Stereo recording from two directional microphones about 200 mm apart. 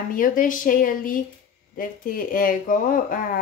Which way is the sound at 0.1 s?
45° left (ahead or behind).